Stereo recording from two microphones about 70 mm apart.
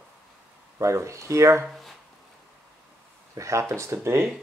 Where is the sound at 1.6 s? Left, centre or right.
Centre.